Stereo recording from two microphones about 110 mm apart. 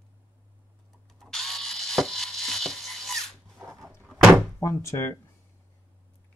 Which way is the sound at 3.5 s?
30° right (ahead or behind).